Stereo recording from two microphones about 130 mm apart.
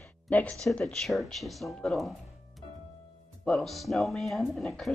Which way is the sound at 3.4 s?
5° left (ahead or behind).